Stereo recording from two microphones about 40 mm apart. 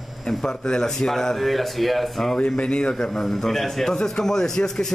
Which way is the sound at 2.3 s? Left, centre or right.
Left.